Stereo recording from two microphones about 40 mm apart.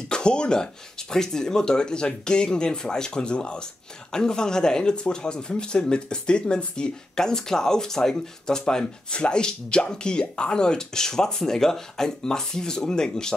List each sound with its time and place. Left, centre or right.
0.1 s speech: left